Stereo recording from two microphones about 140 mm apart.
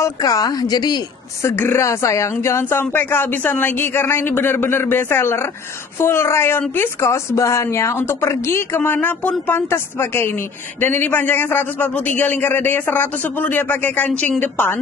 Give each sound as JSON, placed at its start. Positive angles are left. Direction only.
{"t": 0.0, "sound": "speech", "side_deg": 25}
{"t": 1.5, "sound": "a woman's voice", "side_deg": 15}